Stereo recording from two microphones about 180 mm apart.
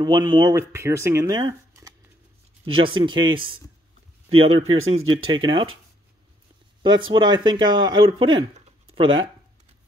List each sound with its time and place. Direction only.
0.0 s speech: 25° right (ahead or behind)
1.5 s shuffling cards: 15° right (ahead or behind)
2.6 s speech: 30° right (ahead or behind)
6.8 s speech: 25° right (ahead or behind)